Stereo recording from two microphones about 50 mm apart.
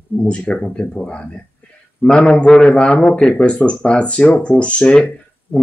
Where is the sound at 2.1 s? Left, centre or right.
Left.